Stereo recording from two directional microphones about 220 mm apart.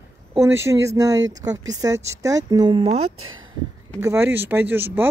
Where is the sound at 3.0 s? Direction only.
70° right (ahead or behind).